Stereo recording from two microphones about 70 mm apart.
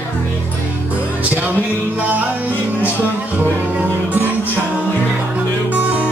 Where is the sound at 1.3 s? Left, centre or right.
Right.